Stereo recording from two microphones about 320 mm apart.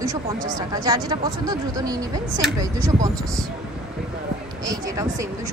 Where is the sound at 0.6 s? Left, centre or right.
Centre.